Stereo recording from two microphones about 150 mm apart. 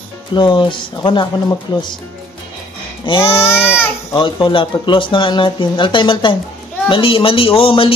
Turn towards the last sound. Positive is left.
turn(degrees=40)  # may be behind; listen again after turning